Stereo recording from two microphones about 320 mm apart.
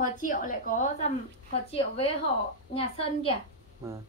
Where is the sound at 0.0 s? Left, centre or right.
Left.